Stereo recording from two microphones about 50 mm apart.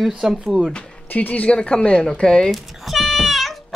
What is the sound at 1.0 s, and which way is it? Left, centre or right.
Speech, left.